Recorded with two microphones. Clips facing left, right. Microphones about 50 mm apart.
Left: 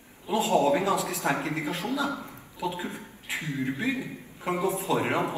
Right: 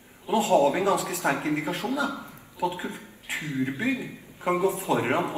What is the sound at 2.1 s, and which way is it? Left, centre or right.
Speech, left.